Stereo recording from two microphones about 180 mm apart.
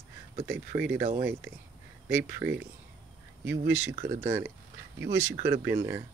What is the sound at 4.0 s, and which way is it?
Speech, 15° right (ahead or behind).